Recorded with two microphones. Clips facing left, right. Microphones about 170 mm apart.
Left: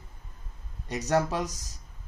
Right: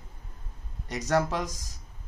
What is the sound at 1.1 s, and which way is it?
Speech, 15° left (ahead or behind).